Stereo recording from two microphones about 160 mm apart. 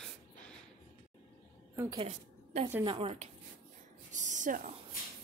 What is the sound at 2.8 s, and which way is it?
Speech, 40° right (ahead or behind).